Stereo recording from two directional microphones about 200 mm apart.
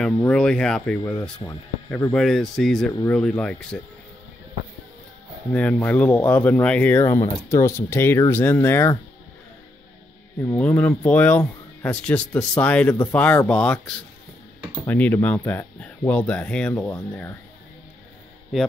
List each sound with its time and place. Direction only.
0.2 s speech: 5° left (ahead or behind)
1.9 s speech: 15° left (ahead or behind)
2.1 s speech: centre (ahead or behind)
5.5 s speech: 5° left (ahead or behind)
10.4 s speech: 10° left (ahead or behind)